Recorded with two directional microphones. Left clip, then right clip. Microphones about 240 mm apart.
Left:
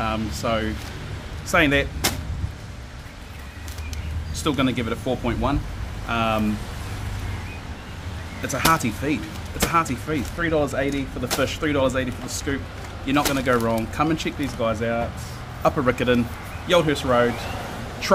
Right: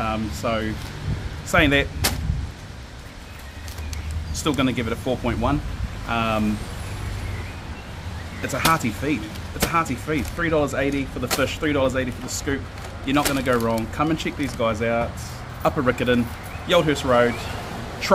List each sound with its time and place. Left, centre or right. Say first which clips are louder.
0.0 s speech: even; centre
4.4 s speech: even; centre
8.4 s speech: even; centre
15.6 s speech: left 1 dB; centre